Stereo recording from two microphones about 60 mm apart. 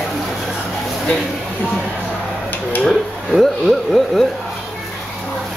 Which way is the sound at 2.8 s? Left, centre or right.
Centre.